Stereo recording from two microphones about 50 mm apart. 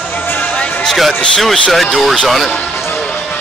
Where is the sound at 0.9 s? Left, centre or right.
Centre.